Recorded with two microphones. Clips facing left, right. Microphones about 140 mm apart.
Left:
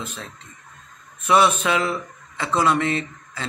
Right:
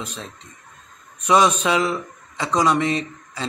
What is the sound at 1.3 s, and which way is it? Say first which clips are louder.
A man's voice: right 1 dB; 15° right (ahead or behind).